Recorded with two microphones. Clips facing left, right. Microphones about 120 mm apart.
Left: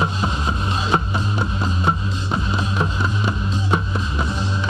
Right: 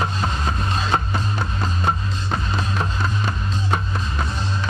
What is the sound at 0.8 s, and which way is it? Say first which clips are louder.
Music: left 3 dB; 15° left (ahead or behind).